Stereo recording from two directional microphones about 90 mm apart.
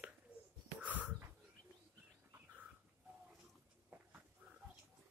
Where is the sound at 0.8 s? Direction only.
15° right (ahead or behind).